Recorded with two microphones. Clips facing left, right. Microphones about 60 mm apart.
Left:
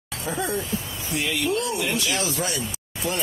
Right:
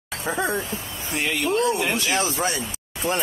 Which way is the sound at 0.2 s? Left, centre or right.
Right.